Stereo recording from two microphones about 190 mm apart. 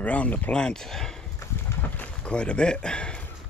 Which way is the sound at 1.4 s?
10° left (ahead or behind).